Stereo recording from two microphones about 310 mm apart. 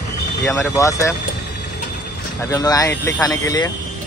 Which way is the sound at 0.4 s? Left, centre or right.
Centre.